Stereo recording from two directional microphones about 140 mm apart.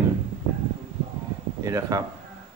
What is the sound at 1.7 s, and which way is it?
Speech, 20° right (ahead or behind).